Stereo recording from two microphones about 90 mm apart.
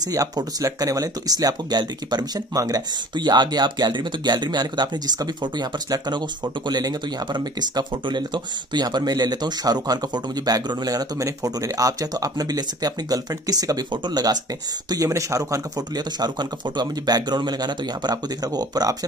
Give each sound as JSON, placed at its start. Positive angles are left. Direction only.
{"t": 0.0, "sound": "speech", "side_deg": -45}
{"t": 3.2, "sound": "speech", "side_deg": -55}